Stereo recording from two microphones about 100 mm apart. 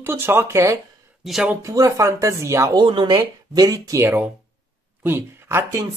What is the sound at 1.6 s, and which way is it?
Speech, 30° right (ahead or behind).